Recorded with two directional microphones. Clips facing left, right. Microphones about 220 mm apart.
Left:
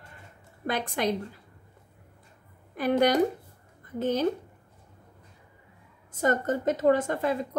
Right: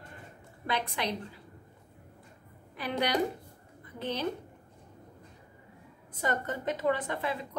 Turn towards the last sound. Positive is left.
turn(degrees=45)  # may be behind; listen again after turning